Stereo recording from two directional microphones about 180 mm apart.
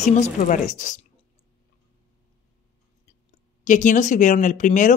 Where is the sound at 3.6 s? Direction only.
45° left (ahead or behind).